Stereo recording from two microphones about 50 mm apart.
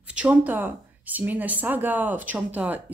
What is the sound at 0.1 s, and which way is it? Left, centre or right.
Speech, right.